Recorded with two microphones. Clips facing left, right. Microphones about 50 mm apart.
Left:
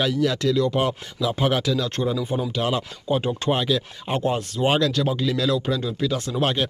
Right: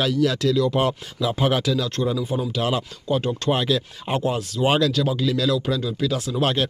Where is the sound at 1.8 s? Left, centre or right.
Centre.